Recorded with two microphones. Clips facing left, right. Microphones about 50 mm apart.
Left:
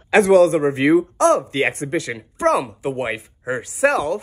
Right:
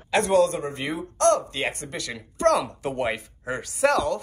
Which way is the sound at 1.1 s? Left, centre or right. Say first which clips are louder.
Left 5 dB; left.